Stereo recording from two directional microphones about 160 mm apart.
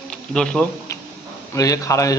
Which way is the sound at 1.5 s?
20° left (ahead or behind).